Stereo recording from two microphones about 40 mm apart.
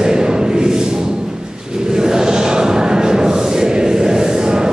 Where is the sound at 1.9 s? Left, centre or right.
Centre.